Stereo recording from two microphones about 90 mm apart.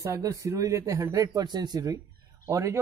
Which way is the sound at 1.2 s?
50° right (ahead or behind).